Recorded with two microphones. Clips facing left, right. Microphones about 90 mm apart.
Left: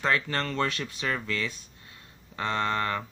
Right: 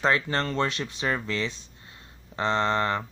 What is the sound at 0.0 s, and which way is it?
Speech, 25° right (ahead or behind).